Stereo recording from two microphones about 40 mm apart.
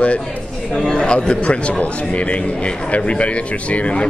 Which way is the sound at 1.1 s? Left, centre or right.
Left.